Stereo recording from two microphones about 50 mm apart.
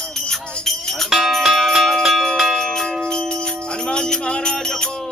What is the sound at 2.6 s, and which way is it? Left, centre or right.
Bell, centre.